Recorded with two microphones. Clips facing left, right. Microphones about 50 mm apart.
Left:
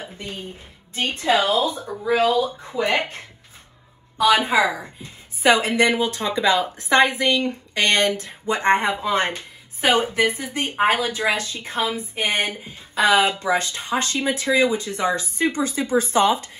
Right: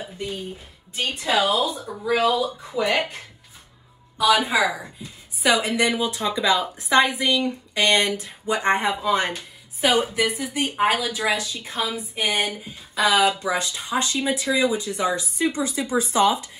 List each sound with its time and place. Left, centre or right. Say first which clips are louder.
0.0 s music: right 2 dB; left
0.9 s speech: left 2 dB; left